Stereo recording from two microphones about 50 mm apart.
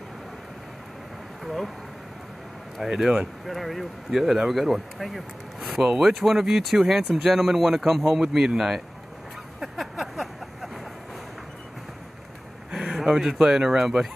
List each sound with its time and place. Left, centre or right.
1.4 s speech: centre
2.8 s speech: centre
3.4 s speech: centre
9.6 s a sound: centre
12.7 s a sound: centre
13.0 s speech: centre